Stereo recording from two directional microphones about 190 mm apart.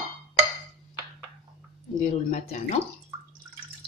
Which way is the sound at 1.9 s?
40° left (ahead or behind).